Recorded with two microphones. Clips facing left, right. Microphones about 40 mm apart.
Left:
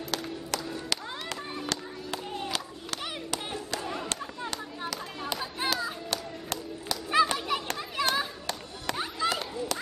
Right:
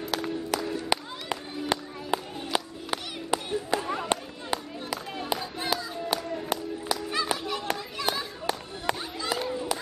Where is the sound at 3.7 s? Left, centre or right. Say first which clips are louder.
Right 7 dB; centre.